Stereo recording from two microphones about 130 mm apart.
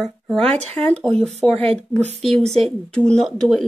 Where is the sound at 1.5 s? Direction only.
50° right (ahead or behind).